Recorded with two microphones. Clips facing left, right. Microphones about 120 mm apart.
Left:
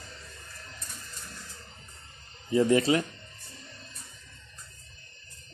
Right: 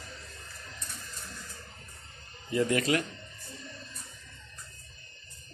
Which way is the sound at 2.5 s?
25° left (ahead or behind).